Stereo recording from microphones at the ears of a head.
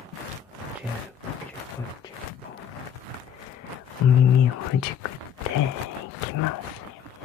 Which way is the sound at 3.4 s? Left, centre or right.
Left.